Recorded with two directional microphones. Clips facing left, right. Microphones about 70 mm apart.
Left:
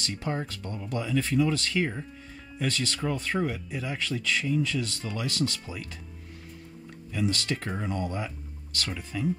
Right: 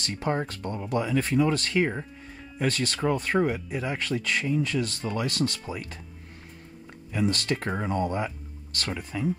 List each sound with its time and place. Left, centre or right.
0.0 s speech: right
7.1 s speech: right
8.9 s speech: right